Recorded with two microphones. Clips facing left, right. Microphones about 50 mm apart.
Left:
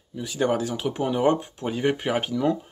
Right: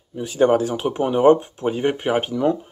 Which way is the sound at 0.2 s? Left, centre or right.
Right.